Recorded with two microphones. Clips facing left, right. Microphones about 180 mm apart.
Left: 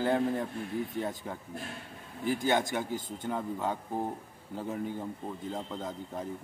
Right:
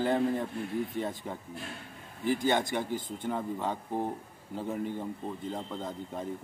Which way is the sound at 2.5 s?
5° left (ahead or behind).